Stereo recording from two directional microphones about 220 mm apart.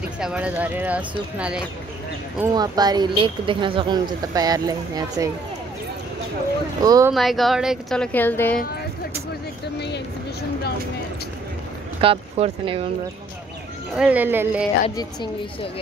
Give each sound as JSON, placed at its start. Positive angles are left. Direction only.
{"t": 0.2, "sound": "speech", "side_deg": -5}
{"t": 2.4, "sound": "speech", "side_deg": -15}
{"t": 6.8, "sound": "speech", "side_deg": -15}
{"t": 7.1, "sound": "speech", "side_deg": 0}
{"t": 9.8, "sound": "a sound", "side_deg": 50}
{"t": 12.0, "sound": "speech", "side_deg": -25}
{"t": 13.9, "sound": "speech", "side_deg": -5}
{"t": 15.0, "sound": "speech", "side_deg": 20}